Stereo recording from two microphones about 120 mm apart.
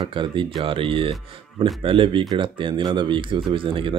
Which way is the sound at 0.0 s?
45° right (ahead or behind).